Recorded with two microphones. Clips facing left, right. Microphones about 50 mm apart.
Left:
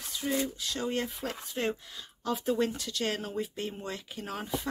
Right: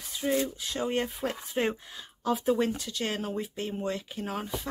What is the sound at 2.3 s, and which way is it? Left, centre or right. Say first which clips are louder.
Speech: right 2 dB; centre.